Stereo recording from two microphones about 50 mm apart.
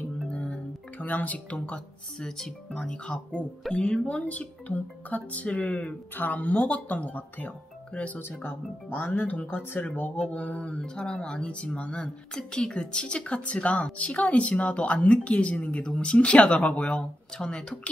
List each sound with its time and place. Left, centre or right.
0.3 s music: left
1.0 s speech: left
2.1 s speech: centre
2.9 s a woman's voice: left
8.2 s speech: left
10.8 s speech: centre
11.5 s a woman's voice: left
17.4 s speech: centre